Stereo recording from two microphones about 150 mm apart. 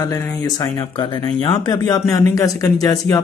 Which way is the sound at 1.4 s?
25° left (ahead or behind).